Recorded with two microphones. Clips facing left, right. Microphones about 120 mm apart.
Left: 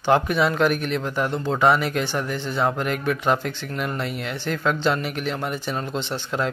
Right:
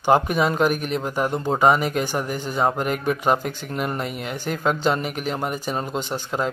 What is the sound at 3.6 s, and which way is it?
Speech, 45° right (ahead or behind).